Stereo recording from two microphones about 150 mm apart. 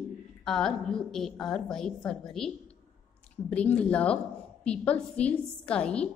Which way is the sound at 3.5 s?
10° left (ahead or behind).